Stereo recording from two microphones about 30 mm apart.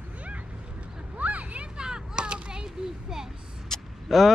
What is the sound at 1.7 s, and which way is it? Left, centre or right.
Children playing, right.